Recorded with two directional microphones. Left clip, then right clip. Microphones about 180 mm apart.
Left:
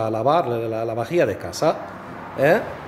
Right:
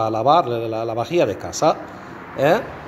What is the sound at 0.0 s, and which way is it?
A man's voice, 5° left (ahead or behind).